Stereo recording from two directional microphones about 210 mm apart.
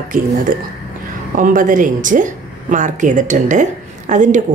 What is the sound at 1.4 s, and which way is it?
Speech, 40° right (ahead or behind).